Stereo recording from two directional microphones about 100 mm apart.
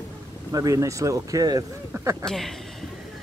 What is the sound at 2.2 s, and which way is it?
Speech, centre (ahead or behind).